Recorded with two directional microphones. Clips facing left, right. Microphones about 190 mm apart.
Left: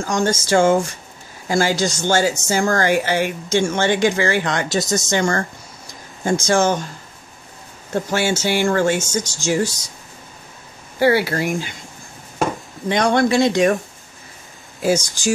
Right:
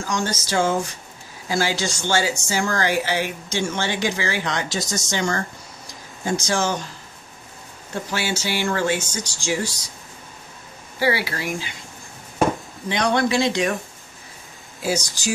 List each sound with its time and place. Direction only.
0.0 s speech: 50° left (ahead or behind)
7.9 s speech: 50° left (ahead or behind)
11.0 s speech: 50° left (ahead or behind)
12.8 s speech: 50° left (ahead or behind)